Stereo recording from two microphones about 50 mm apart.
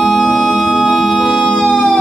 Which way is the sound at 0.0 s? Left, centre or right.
Centre.